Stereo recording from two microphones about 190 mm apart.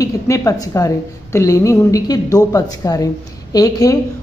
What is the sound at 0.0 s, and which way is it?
A woman's voice, 15° left (ahead or behind).